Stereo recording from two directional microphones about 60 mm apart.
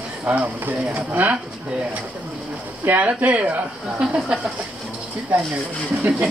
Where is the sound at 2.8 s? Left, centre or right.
Right.